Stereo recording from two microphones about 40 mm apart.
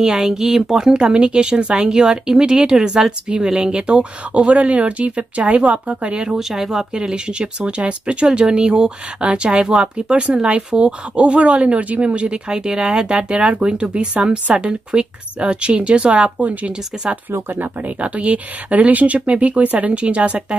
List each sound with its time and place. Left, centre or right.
0.0 s speech: centre
0.9 s speech: right
6.2 s speech: centre
7.0 s speech: right
18.0 s speech: right